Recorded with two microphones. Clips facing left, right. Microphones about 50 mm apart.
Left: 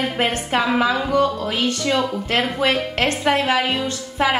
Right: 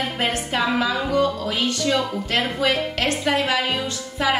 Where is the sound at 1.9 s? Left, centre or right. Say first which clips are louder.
Left 2 dB; left.